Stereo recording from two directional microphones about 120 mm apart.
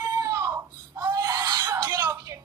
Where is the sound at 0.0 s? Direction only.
30° right (ahead or behind).